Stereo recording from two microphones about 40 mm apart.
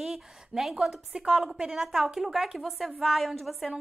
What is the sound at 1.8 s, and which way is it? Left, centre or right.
A woman's voice, centre.